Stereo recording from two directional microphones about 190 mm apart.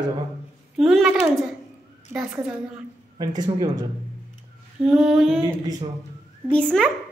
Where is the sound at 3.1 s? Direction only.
20° right (ahead or behind).